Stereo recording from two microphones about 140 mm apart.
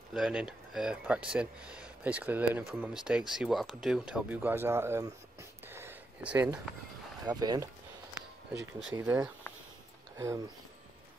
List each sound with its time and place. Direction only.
0.1 s speech: 5° right (ahead or behind)
5.7 s a sound: 15° right (ahead or behind)
7.2 s speech: 30° right (ahead or behind)
8.9 s speech: 15° right (ahead or behind)